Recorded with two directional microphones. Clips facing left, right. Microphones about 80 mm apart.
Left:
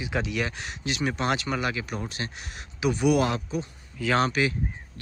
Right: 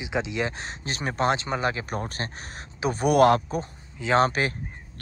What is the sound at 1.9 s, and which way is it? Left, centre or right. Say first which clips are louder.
Speech: right 2 dB; right.